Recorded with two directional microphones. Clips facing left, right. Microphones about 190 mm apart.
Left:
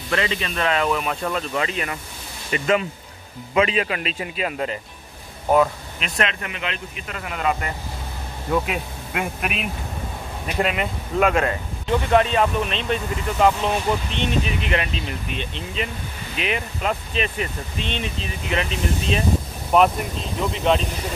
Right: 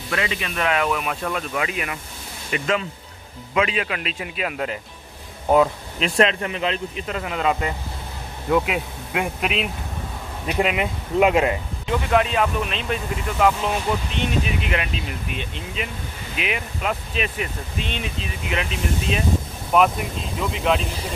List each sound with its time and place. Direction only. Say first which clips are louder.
0.1 s speech: left 2 dB; 10° right (ahead or behind)
2.5 s speech: left 3 dB; 5° left (ahead or behind)
5.9 s speech: right 6 dB; 30° right (ahead or behind); by 9.5 s 15° right (ahead or behind)
10.6 s speech: right 1 dB; 15° right (ahead or behind)
12.1 s speech: left 1 dB; 5° right (ahead or behind)